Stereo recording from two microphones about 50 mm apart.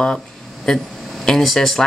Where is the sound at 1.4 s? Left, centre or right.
Centre.